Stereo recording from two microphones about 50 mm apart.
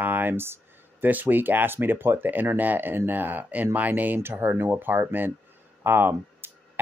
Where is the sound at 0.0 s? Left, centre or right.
Right.